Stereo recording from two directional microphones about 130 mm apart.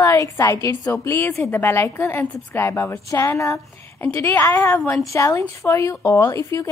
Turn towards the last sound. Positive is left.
turn(degrees=25)  # may be behind; listen again after turning